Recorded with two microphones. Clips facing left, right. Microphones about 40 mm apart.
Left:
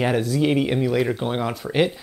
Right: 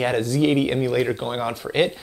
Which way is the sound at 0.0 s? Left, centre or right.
Centre.